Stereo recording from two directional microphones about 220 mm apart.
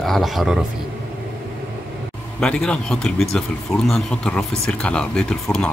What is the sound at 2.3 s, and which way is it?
Speech, 5° left (ahead or behind).